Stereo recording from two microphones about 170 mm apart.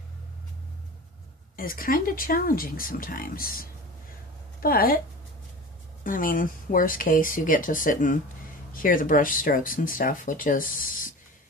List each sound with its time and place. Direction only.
1.6 s a woman's voice: 55° left (ahead or behind)
6.0 s speech: 55° left (ahead or behind)